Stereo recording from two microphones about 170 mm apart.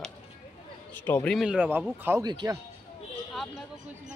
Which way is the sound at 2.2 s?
25° right (ahead or behind).